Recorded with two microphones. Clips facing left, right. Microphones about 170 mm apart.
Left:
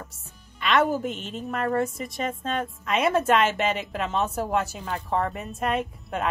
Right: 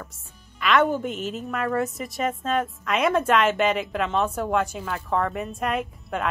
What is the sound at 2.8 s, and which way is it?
A woman's voice, 30° left (ahead or behind).